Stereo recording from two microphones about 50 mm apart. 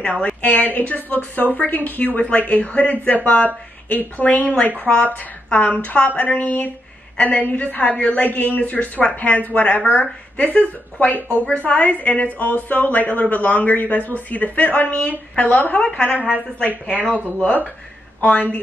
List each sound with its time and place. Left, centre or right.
0.0 s speech: left
2.0 s a woman's voice: left
15.8 s a woman's voice: left
18.2 s a woman's voice: left